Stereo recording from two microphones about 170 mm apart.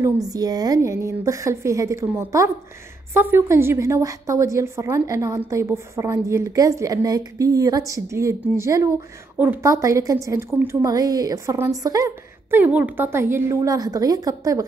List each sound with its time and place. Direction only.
0.0 s a woman's voice: 20° right (ahead or behind)